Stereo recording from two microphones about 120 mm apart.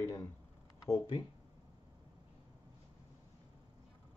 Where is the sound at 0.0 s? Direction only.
20° left (ahead or behind).